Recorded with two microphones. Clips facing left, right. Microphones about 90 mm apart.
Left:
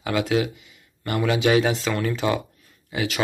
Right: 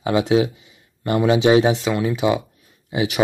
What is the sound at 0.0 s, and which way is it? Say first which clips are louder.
Speech: right 5 dB; 25° right (ahead or behind).